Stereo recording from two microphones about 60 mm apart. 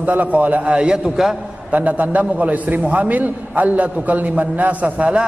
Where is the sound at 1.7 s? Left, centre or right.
Right.